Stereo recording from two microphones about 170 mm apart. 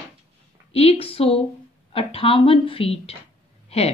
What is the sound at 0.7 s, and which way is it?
Speech, 35° left (ahead or behind).